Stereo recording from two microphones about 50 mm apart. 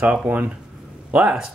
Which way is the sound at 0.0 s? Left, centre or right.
Right.